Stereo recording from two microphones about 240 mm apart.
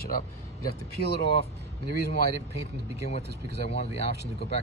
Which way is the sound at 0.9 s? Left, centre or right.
Left.